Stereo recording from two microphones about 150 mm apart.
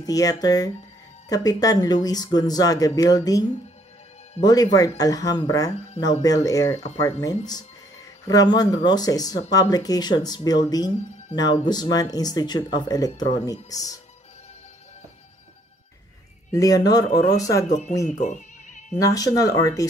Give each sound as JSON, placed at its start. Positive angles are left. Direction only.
{"t": 0.0, "sound": "speech", "side_deg": 25}
{"t": 6.7, "sound": "speech", "side_deg": 50}
{"t": 7.0, "sound": "speech", "side_deg": 20}
{"t": 16.5, "sound": "speech", "side_deg": 25}
{"t": 17.6, "sound": "speech", "side_deg": 55}
{"t": 18.9, "sound": "speech", "side_deg": 25}